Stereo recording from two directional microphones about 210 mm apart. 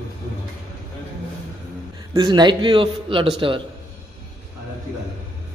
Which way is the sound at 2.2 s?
20° right (ahead or behind).